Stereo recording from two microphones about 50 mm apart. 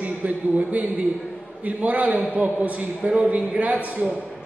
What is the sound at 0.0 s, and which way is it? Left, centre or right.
A man's voice, right.